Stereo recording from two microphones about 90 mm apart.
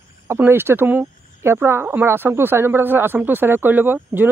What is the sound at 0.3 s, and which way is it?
Speech, 25° right (ahead or behind).